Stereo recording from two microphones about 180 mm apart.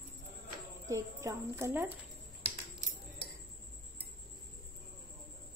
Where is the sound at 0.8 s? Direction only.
15° right (ahead or behind).